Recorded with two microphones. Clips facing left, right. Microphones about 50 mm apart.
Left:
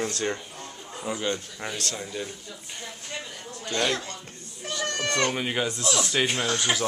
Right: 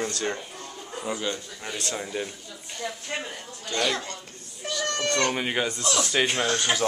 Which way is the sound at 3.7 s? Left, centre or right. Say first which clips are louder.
Even; centre.